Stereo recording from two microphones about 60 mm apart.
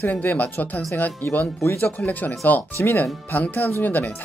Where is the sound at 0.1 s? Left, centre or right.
Left.